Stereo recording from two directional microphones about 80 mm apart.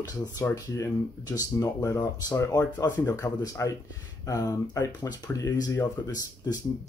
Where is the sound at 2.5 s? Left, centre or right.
Left.